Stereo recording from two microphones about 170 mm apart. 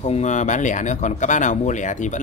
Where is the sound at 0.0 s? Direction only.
45° left (ahead or behind).